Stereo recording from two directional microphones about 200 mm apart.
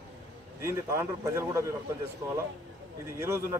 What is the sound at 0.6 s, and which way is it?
A man's voice, 15° right (ahead or behind).